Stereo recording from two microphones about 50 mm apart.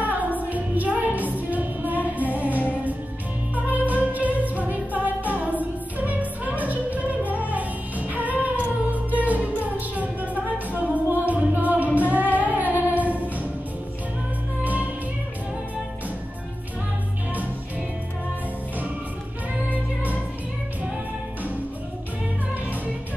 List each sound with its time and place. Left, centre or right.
0.0 s music: right
14.6 s music: right
19.7 s music: right